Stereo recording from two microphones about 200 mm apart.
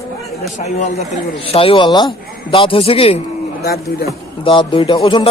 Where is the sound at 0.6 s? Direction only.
30° left (ahead or behind).